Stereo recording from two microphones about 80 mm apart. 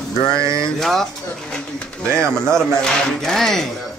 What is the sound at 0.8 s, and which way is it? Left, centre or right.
Speech, centre.